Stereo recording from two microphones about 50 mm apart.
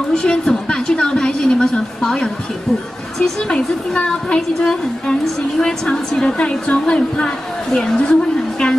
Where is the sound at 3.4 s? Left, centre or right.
Centre.